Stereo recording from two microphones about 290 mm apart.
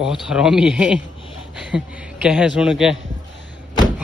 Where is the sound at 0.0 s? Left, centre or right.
Centre.